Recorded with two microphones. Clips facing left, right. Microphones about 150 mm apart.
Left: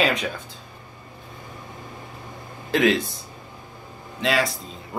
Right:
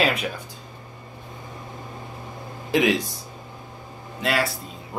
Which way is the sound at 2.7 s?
15° right (ahead or behind).